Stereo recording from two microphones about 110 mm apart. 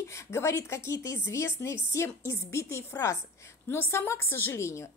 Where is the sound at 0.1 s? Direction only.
25° left (ahead or behind).